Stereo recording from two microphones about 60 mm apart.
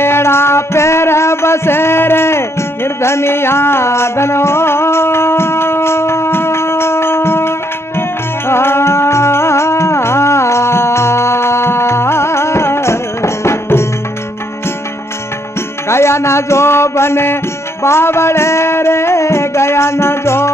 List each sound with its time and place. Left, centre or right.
0.0 s music: left
15.9 s music: left